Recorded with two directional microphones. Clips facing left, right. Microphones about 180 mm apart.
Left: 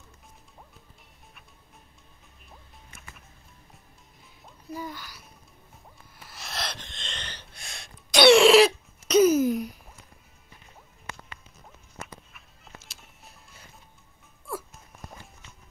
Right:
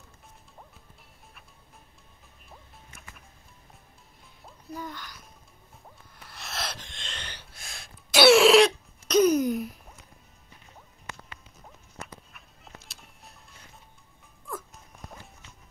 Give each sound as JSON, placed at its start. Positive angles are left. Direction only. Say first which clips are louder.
{"t": 4.6, "sound": "babbling", "louder": "left 2 dB", "side_deg": 5}
{"t": 6.2, "sound": "gasp", "louder": "left 1 dB", "side_deg": 0}
{"t": 12.3, "sound": "music", "louder": "even", "side_deg": 0}